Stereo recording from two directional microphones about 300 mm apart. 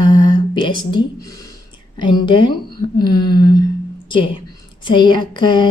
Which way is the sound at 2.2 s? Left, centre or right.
Centre.